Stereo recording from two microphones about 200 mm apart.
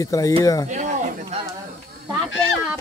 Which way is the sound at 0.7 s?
35° right (ahead or behind).